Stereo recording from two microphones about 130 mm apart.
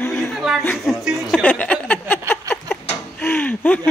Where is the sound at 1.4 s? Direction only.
10° left (ahead or behind).